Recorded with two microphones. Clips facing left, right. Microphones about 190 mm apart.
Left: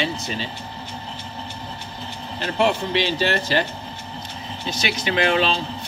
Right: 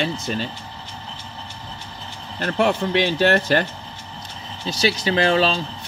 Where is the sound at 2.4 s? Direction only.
55° right (ahead or behind).